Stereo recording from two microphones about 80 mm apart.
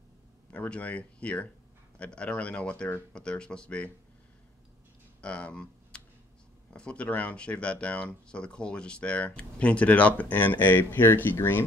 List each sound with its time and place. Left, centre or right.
0.5 s speech: centre
5.2 s computer keyboard: centre
6.7 s speech: centre